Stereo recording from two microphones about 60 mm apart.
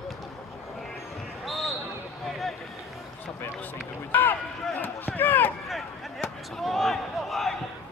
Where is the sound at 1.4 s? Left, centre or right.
Centre.